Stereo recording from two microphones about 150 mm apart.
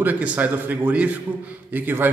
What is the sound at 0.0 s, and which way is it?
Speech, 10° right (ahead or behind).